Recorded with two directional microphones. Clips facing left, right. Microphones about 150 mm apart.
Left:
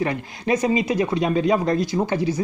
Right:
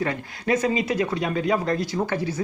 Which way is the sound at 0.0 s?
20° left (ahead or behind).